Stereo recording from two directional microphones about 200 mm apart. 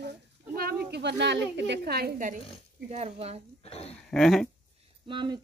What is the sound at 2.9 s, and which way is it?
Speech, 30° right (ahead or behind).